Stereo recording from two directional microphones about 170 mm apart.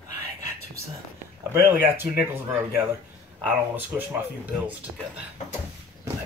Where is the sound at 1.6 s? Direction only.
15° right (ahead or behind).